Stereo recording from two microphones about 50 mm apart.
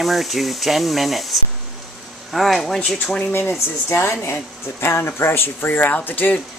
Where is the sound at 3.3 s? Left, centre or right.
Left.